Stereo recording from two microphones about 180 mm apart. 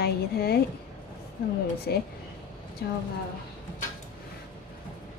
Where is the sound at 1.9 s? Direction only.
65° left (ahead or behind).